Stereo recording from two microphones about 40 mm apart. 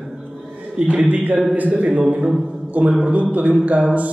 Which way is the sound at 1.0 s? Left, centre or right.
Right.